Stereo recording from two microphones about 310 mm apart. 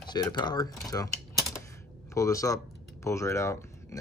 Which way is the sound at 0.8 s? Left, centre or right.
Centre.